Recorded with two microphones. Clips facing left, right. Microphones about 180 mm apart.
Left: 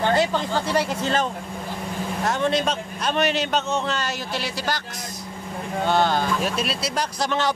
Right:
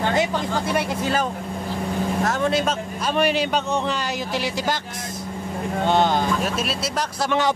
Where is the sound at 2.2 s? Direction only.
5° right (ahead or behind).